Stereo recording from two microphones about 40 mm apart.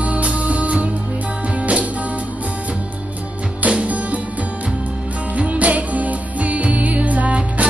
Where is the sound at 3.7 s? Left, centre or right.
Right.